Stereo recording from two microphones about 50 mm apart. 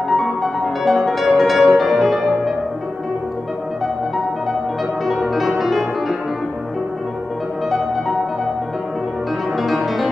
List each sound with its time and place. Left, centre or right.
0.1 s music: centre
5.0 s music: centre